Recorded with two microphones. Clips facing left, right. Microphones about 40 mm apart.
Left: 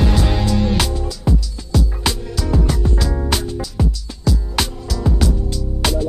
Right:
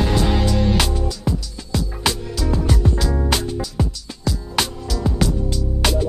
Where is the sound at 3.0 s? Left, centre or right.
Centre.